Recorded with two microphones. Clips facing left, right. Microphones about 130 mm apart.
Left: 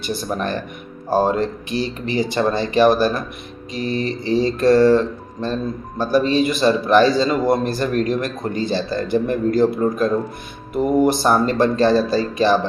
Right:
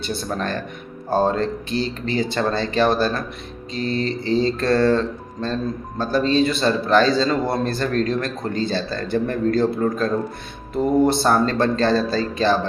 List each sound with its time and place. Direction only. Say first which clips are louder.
0.3 s music: left 2 dB; 15° left (ahead or behind)